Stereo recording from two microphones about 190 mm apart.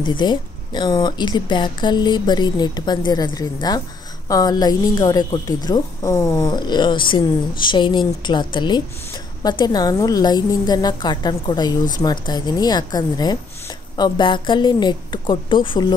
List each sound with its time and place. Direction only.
0.0 s speech: 25° left (ahead or behind)